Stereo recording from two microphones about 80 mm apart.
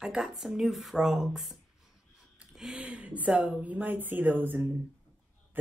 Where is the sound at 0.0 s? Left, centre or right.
Centre.